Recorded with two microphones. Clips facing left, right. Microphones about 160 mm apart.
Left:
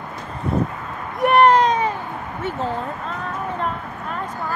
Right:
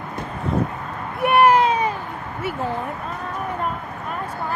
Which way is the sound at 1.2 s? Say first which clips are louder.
Left 1 dB; 5° right (ahead or behind).